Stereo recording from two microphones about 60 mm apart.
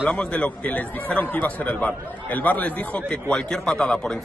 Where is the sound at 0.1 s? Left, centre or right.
Centre.